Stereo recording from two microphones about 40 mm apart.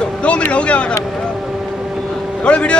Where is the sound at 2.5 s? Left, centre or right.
Left.